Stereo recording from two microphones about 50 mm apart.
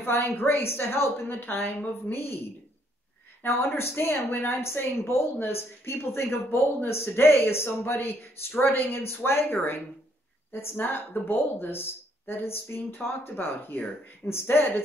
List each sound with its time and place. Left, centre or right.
0.0 s speech: left
3.4 s a woman's voice: left
9.0 s speech: left